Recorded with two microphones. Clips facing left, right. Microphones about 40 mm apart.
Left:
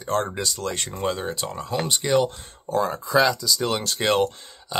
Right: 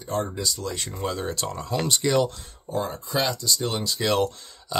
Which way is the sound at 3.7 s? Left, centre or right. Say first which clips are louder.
Left 3 dB; left.